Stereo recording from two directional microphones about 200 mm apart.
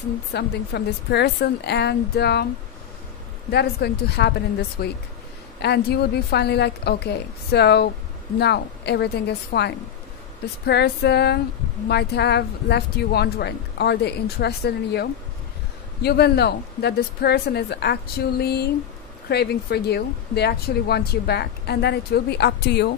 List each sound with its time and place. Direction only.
0.3 s speech: 55° left (ahead or behind)
3.5 s speech: 55° left (ahead or behind)